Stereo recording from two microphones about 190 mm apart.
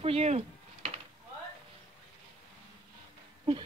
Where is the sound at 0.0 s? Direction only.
30° right (ahead or behind).